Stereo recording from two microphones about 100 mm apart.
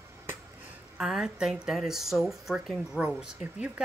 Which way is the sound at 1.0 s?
5° right (ahead or behind).